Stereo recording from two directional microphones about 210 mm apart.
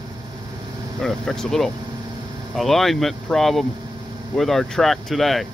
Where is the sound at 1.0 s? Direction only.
Centre (ahead or behind).